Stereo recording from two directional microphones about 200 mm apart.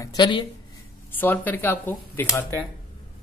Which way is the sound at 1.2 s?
10° left (ahead or behind).